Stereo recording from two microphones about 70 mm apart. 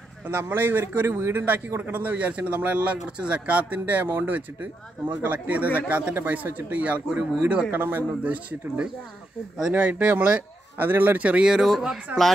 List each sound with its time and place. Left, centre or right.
0.3 s speech: right
10.8 s speech: right; by 12.0 s centre